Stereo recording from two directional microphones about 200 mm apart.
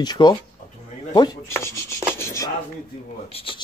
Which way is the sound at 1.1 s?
20° left (ahead or behind).